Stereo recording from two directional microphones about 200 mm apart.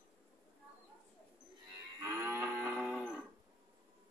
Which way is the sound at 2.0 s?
15° right (ahead or behind).